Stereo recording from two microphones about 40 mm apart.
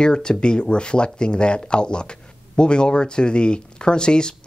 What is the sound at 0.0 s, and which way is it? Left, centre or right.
Speech, centre.